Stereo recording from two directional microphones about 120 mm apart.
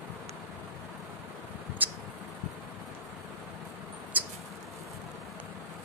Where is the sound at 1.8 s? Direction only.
15° right (ahead or behind).